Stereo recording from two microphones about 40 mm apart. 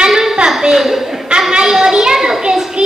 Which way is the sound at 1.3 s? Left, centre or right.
Right.